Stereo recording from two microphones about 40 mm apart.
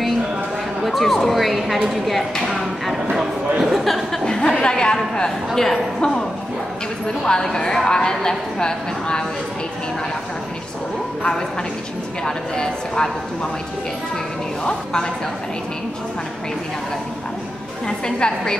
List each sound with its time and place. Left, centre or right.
0.8 s speech: centre
2.4 s music: centre
3.8 s a woman's voice: centre
4.3 s a sound: centre
4.9 s a woman's voice: centre
5.5 s a woman's voice: centre
5.9 s a woman's voice: left
7.2 s a woman's voice: centre
12.3 s a woman's voice: centre
17.8 s a woman's voice: centre